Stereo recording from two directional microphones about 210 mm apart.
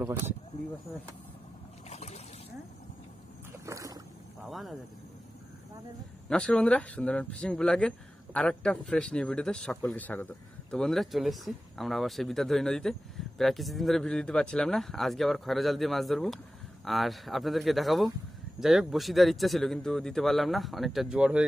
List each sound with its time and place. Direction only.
1.9 s boat: 30° left (ahead or behind)
3.5 s rowboat: 15° right (ahead or behind)
4.5 s speech: centre (ahead or behind)
6.2 s speech: 5° left (ahead or behind)